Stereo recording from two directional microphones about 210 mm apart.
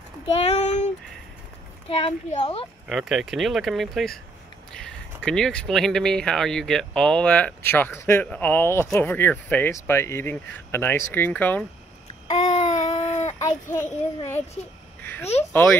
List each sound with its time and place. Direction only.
0.4 s speech: 30° left (ahead or behind)
1.9 s speech: 25° left (ahead or behind)
2.9 s speech: centre (ahead or behind)
12.3 s babbling: 30° left (ahead or behind)
13.1 s a sound: 30° left (ahead or behind)
13.7 s speech: 10° left (ahead or behind)